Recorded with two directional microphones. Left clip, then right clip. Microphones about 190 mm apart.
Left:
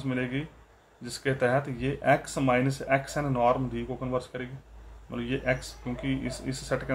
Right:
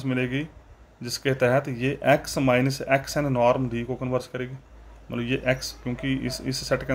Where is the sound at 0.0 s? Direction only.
45° right (ahead or behind).